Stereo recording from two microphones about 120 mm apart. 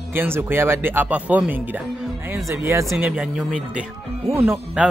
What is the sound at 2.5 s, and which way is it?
Speech, 25° right (ahead or behind).